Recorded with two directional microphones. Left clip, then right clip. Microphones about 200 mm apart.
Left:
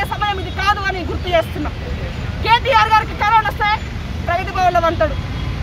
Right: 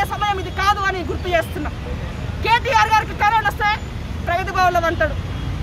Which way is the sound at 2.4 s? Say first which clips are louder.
Left 3 dB; 5° right (ahead or behind).